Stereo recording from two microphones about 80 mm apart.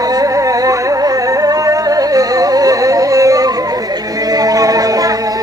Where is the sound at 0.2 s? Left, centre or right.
Right.